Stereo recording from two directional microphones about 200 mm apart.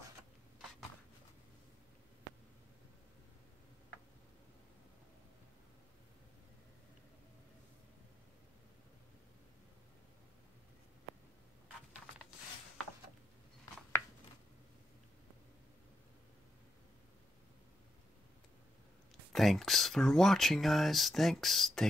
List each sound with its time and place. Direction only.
19.3 s speech: centre (ahead or behind)